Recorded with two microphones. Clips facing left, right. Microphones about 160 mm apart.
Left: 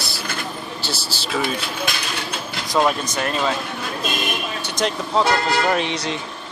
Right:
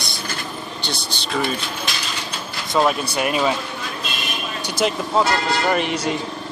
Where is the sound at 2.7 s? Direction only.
Centre (ahead or behind).